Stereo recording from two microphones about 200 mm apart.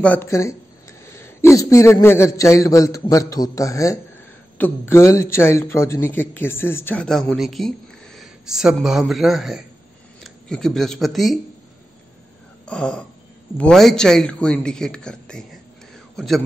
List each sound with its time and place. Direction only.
0.0 s a man's voice: 10° left (ahead or behind)
12.6 s a sound: 5° left (ahead or behind)
13.6 s speech: 5° left (ahead or behind)